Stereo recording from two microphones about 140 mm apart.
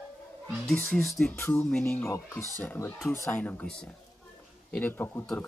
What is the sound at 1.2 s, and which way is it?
Speech, 15° left (ahead or behind).